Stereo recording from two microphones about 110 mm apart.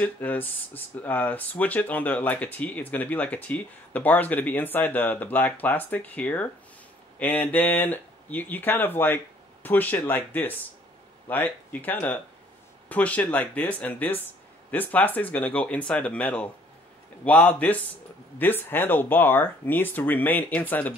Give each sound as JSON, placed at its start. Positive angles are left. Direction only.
{"t": 0.0, "sound": "speech", "side_deg": 15}